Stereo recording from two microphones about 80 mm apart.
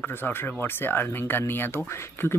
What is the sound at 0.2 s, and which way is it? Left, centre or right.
Speech, left.